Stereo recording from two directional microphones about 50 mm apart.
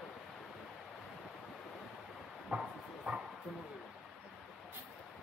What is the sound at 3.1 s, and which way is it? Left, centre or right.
Bow-wow, right.